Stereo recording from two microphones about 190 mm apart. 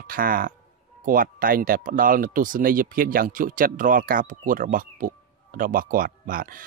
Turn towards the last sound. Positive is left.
turn(degrees=-45)  # may be behind; listen again after turning